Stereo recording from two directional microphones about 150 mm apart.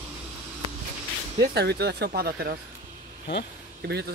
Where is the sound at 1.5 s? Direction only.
90° right.